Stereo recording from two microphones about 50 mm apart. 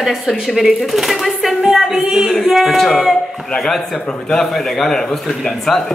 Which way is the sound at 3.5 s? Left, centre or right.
Centre.